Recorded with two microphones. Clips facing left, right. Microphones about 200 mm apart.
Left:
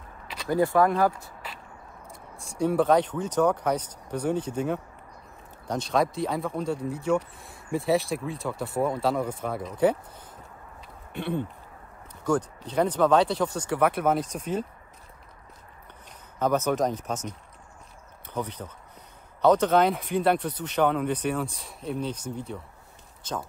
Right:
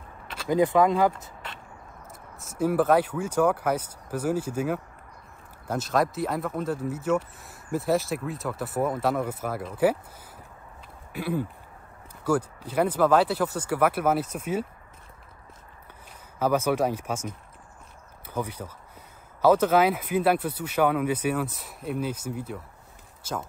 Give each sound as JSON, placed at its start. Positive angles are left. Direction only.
{"t": 0.5, "sound": "speech", "side_deg": -20}
{"t": 2.3, "sound": "speech", "side_deg": -5}
{"t": 16.3, "sound": "speech", "side_deg": -10}